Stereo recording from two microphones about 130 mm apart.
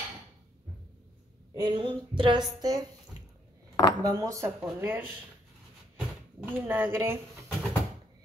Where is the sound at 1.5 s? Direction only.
35° right (ahead or behind).